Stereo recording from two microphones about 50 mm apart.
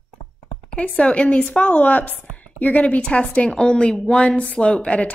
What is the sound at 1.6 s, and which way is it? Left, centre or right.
A woman's voice, left.